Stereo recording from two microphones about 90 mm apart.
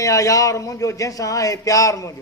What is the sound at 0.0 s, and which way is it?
Speech, 40° left (ahead or behind).